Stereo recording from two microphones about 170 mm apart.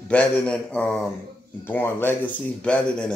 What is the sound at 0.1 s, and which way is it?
Speech, 5° left (ahead or behind).